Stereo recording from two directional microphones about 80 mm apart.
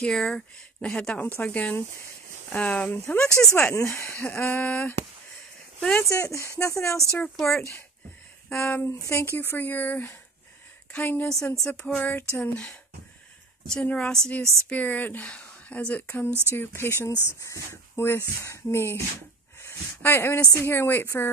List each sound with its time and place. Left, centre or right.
0.0 s speech: centre
3.5 s speech: left
4.2 s speech: left
6.0 s speech: left
7.3 s speech: centre
8.6 s a woman's voice: left
11.5 s speech: centre
14.4 s speech: right
14.7 s speech: centre
16.3 s speech: right
16.5 s speech: left